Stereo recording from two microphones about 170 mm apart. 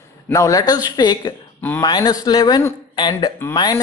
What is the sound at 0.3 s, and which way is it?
A man's voice, 20° left (ahead or behind).